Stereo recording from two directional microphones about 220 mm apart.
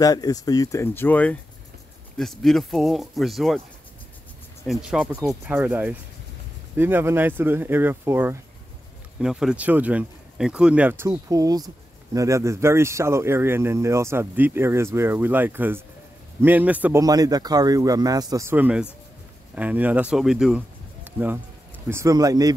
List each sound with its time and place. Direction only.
0.0 s speech: 15° left (ahead or behind); by 3.6 s centre (ahead or behind)
4.6 s speech: 5° right (ahead or behind)
21.8 s speech: 15° right (ahead or behind)